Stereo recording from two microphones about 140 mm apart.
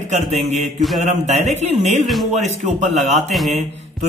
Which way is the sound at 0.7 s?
Centre (ahead or behind).